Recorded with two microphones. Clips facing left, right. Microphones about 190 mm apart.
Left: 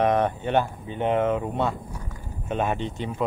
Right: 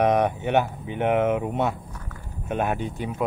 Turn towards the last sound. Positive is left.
turn(degrees=-5)  # may be behind; listen again after turning